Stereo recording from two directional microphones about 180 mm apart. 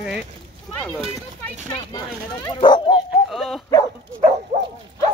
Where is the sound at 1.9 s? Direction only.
25° left (ahead or behind).